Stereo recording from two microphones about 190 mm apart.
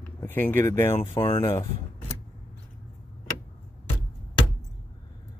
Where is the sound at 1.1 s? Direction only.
25° left (ahead or behind).